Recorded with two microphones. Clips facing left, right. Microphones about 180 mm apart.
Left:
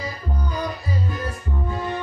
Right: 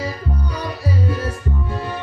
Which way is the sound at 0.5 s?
90° right.